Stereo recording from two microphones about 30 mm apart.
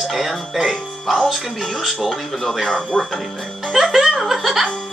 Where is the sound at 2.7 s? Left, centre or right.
Left.